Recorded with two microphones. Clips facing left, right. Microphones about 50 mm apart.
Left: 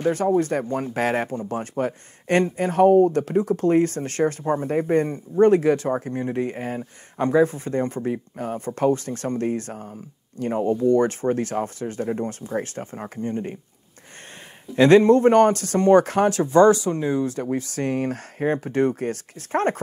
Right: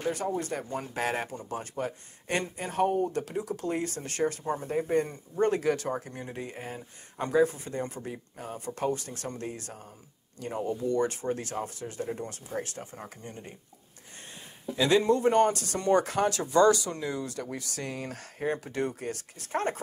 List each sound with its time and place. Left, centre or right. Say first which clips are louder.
0.0 s speech: left 10 dB; left
14.8 s speech: left 10 dB; left